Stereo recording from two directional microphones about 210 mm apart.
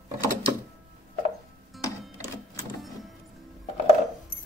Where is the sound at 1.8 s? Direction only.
15° left (ahead or behind).